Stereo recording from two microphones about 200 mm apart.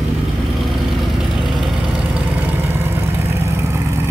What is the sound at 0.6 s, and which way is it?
Vehicle, centre (ahead or behind).